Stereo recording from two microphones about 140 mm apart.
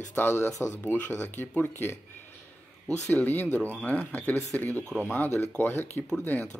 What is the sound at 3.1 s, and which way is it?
Speech, 15° left (ahead or behind).